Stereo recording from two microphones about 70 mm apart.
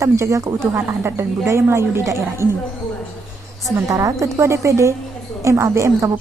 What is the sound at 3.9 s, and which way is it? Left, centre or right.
Speech, right.